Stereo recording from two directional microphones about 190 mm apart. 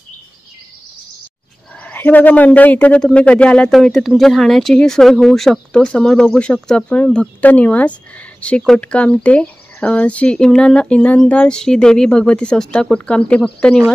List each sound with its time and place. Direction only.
1.8 s speech: 10° left (ahead or behind)